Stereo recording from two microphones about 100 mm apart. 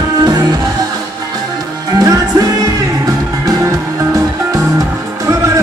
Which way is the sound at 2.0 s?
40° right (ahead or behind).